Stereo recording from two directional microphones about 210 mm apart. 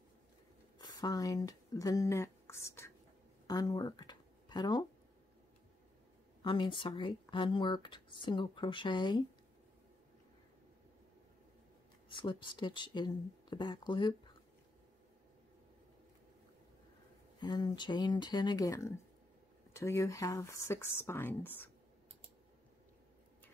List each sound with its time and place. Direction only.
0.7 s speech: 15° left (ahead or behind)
6.4 s speech: 25° left (ahead or behind)
12.1 s speech: 25° left (ahead or behind)
17.4 s speech: 20° left (ahead or behind)